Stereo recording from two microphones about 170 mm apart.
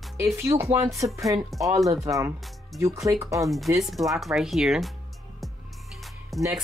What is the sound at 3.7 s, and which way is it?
Speech, centre (ahead or behind).